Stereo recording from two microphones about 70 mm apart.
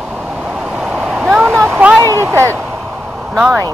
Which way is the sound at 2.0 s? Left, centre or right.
Right.